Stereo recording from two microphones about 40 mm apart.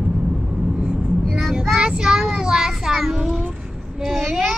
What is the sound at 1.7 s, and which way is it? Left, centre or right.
Child singing, right.